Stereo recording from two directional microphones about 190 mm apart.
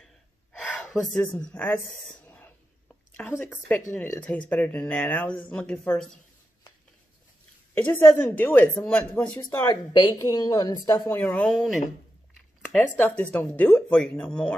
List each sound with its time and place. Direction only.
0.0 s gasp: centre (ahead or behind)
2.2 s a sound: 10° left (ahead or behind)
3.2 s speech: 10° left (ahead or behind)
7.7 s speech: 10° left (ahead or behind)
9.7 s a woman's voice: 25° left (ahead or behind); by 11.8 s centre (ahead or behind)
12.4 s a sound: centre (ahead or behind)
13.2 s speech: 10° left (ahead or behind)